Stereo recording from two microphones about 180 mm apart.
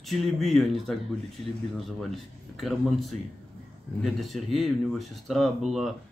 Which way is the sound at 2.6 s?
Centre (ahead or behind).